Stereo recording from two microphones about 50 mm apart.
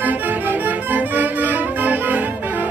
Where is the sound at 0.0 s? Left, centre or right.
Right.